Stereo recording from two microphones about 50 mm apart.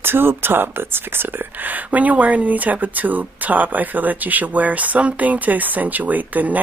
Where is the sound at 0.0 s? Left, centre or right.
Right.